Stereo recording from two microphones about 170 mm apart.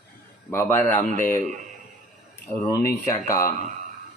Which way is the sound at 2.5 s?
15° left (ahead or behind).